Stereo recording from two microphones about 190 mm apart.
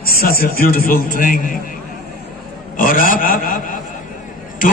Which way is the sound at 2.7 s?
45° left (ahead or behind).